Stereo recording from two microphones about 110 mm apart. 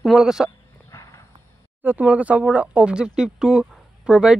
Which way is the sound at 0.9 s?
30° left (ahead or behind).